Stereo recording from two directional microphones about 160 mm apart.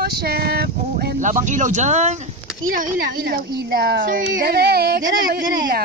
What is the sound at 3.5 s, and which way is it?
Speech, 80° right.